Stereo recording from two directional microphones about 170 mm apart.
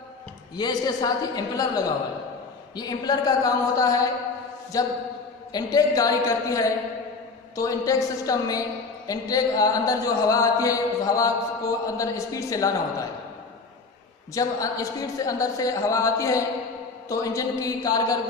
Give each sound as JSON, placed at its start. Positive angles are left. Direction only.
{"t": 0.6, "sound": "a woman's voice", "side_deg": 25}
{"t": 14.3, "sound": "a woman's voice", "side_deg": 20}